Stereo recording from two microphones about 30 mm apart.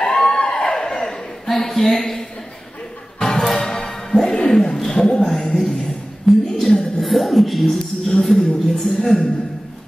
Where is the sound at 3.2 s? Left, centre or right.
Centre.